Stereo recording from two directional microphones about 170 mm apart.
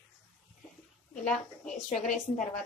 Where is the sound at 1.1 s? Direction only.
5° left (ahead or behind).